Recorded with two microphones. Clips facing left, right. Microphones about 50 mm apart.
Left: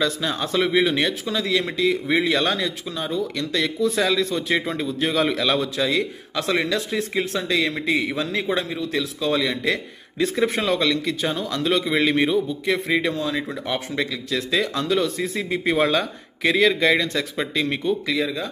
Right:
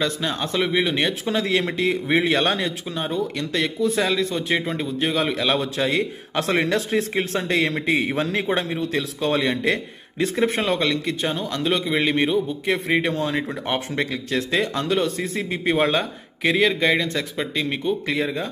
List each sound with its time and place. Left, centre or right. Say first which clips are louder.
0.0 s speech: left 1 dB; centre
1.2 s a man's voice: right 1 dB; right
5.9 s a man's voice: right 1 dB; right
10.3 s speech: right 1 dB; right
12.4 s a man's voice: even; right
14.6 s speech: left 2 dB; centre
15.5 s speech: even; centre
18.0 s a man's voice: even; right